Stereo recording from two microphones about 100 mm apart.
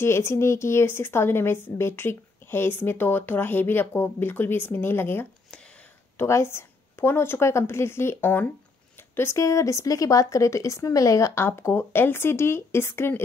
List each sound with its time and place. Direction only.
0.0 s a woman's voice: 25° left (ahead or behind)